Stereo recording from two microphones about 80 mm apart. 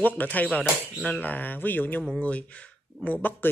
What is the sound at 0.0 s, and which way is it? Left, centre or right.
Speech, left.